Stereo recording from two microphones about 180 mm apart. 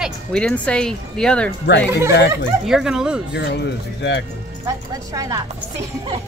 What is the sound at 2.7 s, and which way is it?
Speech, 5° right (ahead or behind).